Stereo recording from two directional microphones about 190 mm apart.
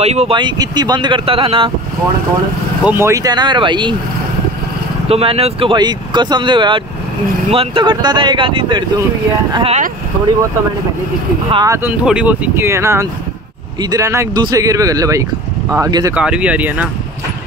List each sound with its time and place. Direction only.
0.0 s speech: 35° right (ahead or behind)
2.8 s speech: 10° right (ahead or behind)
5.0 s speech: 30° right (ahead or behind)
11.5 s speech: 15° right (ahead or behind)
12.0 s speech: 5° right (ahead or behind)
16.2 s speech: 5° right (ahead or behind)